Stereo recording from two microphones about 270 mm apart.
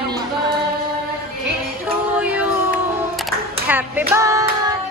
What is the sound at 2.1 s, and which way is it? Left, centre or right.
Music, centre.